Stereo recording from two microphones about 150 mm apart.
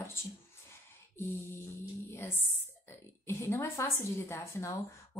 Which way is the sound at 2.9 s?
15° left (ahead or behind).